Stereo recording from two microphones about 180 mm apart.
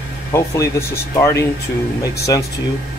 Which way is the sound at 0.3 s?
15° left (ahead or behind).